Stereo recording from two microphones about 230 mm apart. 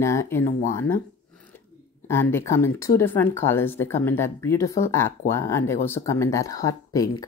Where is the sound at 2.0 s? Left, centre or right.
Centre.